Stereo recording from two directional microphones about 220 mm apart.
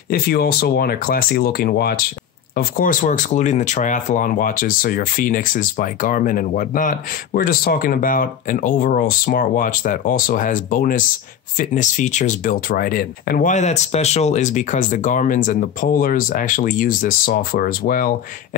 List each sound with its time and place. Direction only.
0.1 s speech: 45° left (ahead or behind)